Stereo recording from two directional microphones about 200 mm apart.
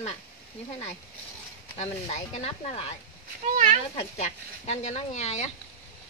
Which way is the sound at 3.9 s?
35° left (ahead or behind).